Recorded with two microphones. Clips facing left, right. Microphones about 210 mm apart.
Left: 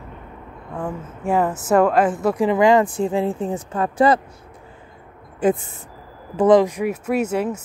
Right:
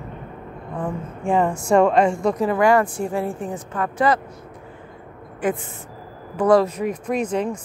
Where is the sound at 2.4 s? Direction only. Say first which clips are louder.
Left 3 dB; 20° left (ahead or behind).